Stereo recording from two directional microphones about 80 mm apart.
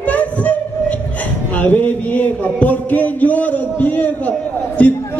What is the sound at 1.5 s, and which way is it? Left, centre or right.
A man's voice, centre.